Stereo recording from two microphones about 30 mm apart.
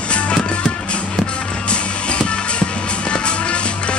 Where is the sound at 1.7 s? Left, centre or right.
Left.